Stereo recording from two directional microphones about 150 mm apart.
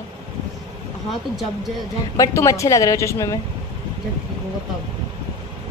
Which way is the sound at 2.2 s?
20° left (ahead or behind).